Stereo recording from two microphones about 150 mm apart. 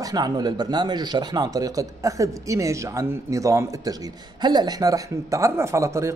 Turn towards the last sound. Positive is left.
turn(degrees=-20)  # may be behind; listen again after turning